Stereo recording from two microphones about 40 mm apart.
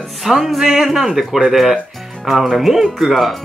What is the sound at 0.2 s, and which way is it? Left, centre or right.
A man's voice, centre.